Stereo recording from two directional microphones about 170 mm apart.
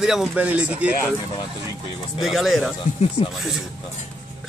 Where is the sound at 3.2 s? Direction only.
35° left (ahead or behind).